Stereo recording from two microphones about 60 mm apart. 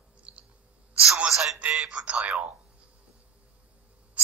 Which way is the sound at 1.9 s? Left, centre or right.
Centre.